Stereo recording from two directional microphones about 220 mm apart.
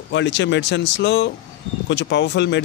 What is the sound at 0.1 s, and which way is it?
A man's voice, 55° left (ahead or behind).